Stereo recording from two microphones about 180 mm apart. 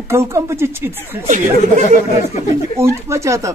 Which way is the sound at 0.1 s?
15° right (ahead or behind).